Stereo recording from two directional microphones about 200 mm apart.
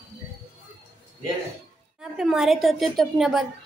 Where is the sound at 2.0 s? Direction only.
Centre (ahead or behind).